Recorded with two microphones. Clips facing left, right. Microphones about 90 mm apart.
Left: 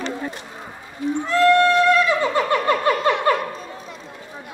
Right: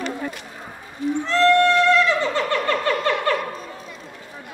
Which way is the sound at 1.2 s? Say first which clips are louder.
Left 1 dB; 15° left (ahead or behind).